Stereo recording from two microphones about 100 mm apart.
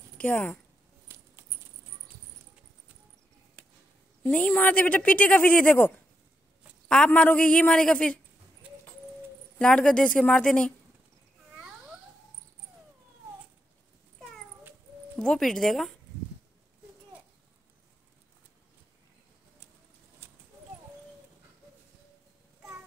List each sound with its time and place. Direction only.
0.2 s speech: 15° left (ahead or behind)
4.2 s speech: 15° left (ahead or behind)
7.1 s speech: 15° left (ahead or behind)
9.6 s speech: 10° left (ahead or behind)
15.1 s speech: 5° left (ahead or behind)